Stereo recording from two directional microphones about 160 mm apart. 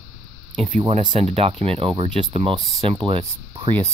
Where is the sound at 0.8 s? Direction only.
30° right (ahead or behind).